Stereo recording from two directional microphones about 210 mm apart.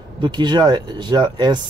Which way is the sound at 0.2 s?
20° right (ahead or behind).